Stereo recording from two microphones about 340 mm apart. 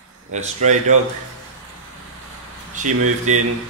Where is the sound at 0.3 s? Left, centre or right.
Centre.